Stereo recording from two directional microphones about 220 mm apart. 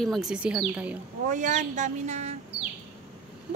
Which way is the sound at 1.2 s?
35° right (ahead or behind).